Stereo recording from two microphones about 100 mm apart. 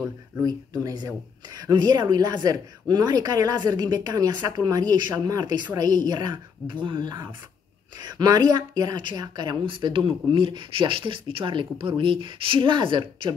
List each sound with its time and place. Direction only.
0.4 s speech: 40° right (ahead or behind); by 13.3 s 55° right (ahead or behind)